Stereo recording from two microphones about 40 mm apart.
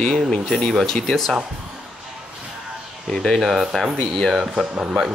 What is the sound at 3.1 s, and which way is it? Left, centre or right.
Speech, centre.